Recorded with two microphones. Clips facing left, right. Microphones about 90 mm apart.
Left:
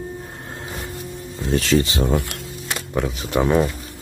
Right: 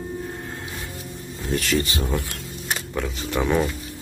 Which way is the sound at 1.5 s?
25° left (ahead or behind).